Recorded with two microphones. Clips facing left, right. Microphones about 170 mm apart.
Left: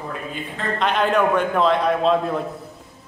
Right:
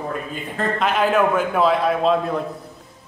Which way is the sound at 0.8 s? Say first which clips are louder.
Even; 5° right (ahead or behind).